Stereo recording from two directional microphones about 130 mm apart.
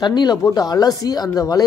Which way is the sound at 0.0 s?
30° left (ahead or behind).